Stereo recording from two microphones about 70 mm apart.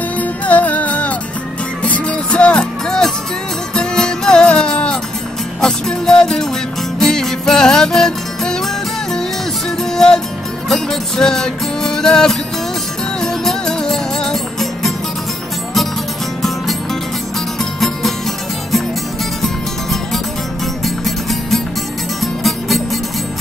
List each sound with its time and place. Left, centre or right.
0.2 s music: left
9.9 s music: centre
17.7 s music: centre
20.8 s music: centre